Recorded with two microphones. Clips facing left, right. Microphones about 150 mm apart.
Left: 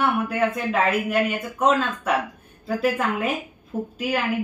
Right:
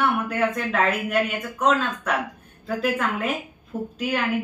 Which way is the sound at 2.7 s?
5° left (ahead or behind).